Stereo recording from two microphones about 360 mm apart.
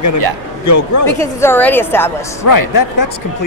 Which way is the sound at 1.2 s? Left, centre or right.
Centre.